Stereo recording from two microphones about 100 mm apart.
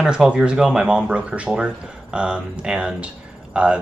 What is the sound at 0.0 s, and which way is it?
Speech, 10° right (ahead or behind).